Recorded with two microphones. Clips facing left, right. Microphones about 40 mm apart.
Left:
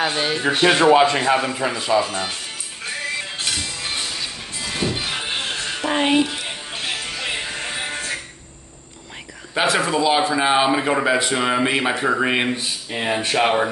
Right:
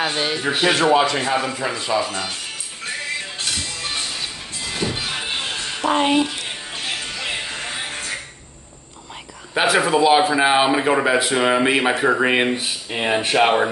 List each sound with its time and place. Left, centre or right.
0.0 s speech: centre
1.0 s speech: left
1.4 s speech: centre
4.7 s music: centre
5.8 s speech: centre
7.2 s music: centre
9.5 s speech: centre